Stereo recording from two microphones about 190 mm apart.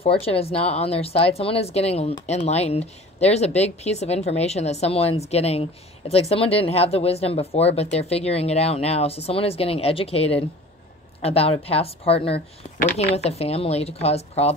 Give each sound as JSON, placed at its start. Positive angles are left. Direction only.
{"t": 0.0, "sound": "speech", "side_deg": 30}